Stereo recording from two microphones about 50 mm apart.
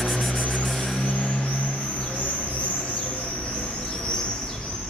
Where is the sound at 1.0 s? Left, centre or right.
Left.